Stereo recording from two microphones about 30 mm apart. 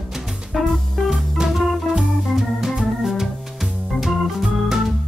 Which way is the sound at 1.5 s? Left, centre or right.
Centre.